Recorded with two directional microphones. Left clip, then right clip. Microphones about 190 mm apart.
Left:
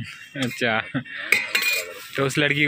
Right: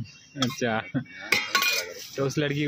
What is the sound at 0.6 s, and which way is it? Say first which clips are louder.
Speech: left 8 dB; 5° right (ahead or behind).